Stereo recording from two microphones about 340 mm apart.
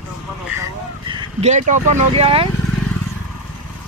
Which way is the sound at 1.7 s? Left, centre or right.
Right.